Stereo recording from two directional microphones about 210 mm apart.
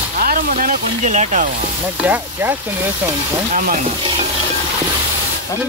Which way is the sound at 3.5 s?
40° right (ahead or behind).